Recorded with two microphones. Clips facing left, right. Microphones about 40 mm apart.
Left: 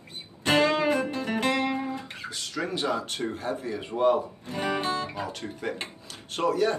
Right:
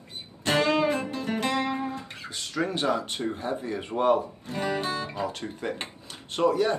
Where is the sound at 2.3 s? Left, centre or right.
Right.